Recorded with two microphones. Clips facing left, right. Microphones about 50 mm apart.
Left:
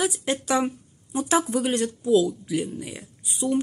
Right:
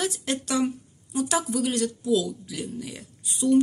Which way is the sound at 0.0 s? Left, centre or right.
Centre.